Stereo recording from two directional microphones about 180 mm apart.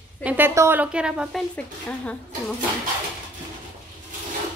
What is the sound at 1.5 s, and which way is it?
Speech, 5° left (ahead or behind).